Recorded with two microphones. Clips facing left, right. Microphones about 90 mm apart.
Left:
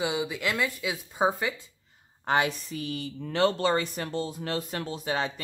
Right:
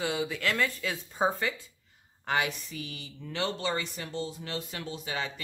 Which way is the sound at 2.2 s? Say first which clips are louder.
Left 4 dB; 30° left (ahead or behind).